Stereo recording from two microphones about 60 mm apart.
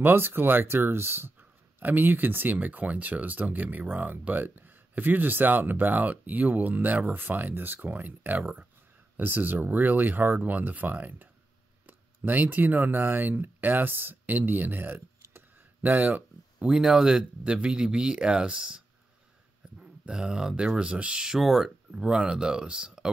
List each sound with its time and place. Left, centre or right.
0.0 s speech: right; by 18.8 s centre
19.8 s speech: centre
21.9 s speech: centre